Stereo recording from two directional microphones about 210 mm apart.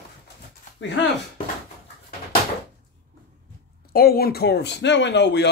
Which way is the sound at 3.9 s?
45° left (ahead or behind).